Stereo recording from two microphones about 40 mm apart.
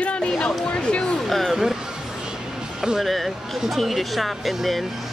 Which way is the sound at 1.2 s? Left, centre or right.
Centre.